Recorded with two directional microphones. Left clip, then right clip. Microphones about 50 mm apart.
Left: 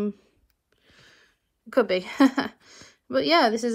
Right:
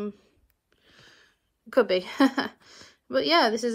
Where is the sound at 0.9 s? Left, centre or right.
Right.